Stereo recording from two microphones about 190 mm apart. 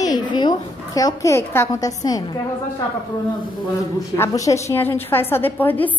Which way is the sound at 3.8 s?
15° left (ahead or behind).